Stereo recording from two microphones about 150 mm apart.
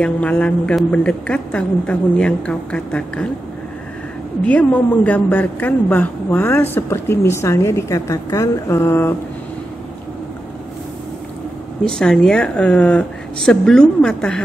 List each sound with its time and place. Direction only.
0.0 s a woman's voice: 10° left (ahead or behind)
4.5 s a woman's voice: 10° left (ahead or behind)
11.8 s speech: 5° left (ahead or behind)